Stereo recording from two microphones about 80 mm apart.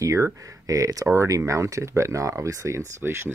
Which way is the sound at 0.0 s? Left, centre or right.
Right.